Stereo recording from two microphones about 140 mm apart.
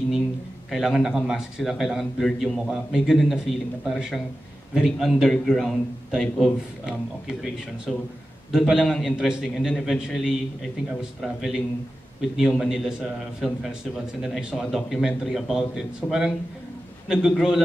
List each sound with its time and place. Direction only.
0.7 s a man's voice: centre (ahead or behind)